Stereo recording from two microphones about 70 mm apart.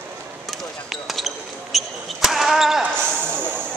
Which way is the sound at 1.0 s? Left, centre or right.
Centre.